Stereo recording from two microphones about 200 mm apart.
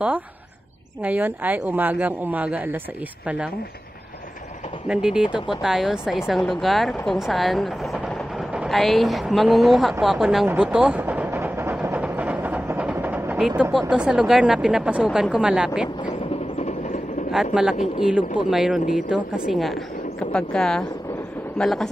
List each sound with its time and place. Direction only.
1.0 s speech: 10° right (ahead or behind)
4.8 s speech: 5° right (ahead or behind)
16.0 s train: 30° left (ahead or behind)
17.6 s speech: centre (ahead or behind)